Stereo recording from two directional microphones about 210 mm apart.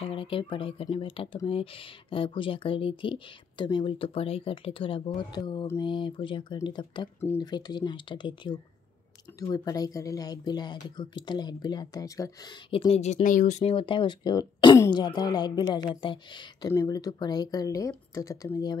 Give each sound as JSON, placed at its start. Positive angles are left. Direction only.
{"t": 0.0, "sound": "speech", "side_deg": 25}
{"t": 12.8, "sound": "speech", "side_deg": 30}